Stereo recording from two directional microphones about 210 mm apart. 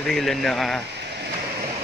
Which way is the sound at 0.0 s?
Centre (ahead or behind).